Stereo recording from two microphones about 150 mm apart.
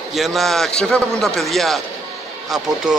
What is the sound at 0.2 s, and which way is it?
A man's voice, centre (ahead or behind).